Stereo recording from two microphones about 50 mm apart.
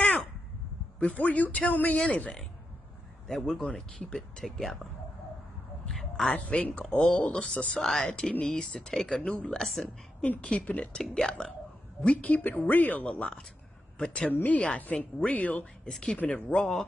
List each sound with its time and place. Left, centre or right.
0.0 s crow: left
0.9 s a woman's voice: left
3.3 s speech: centre
5.9 s a sound: centre
6.3 s speech: left
7.8 s speech: centre
8.1 s speech: centre
9.6 s a woman's voice: centre
10.2 s a woman's voice: left
14.3 s a woman's voice: left
15.8 s speech: centre
16.2 s speech: left
16.5 s speech: centre